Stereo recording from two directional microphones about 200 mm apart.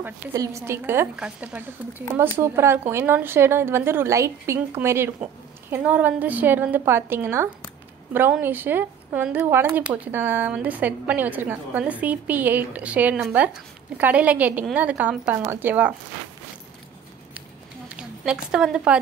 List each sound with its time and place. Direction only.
0.0 s speech: 15° right (ahead or behind)
17.8 s a woman's voice: 5° right (ahead or behind)